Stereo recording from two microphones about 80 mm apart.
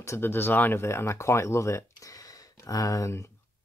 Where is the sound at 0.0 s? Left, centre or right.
Left.